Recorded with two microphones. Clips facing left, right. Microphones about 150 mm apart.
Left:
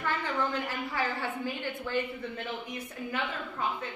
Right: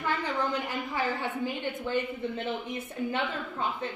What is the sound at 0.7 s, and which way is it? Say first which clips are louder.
A woman's voice: right 2 dB; 15° right (ahead or behind).